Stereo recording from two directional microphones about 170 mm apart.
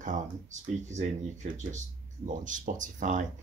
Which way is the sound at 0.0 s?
50° right (ahead or behind).